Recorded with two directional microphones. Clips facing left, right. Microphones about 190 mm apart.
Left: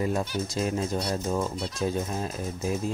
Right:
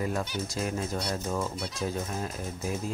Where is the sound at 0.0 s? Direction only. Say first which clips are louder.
Left 3 dB; 25° left (ahead or behind).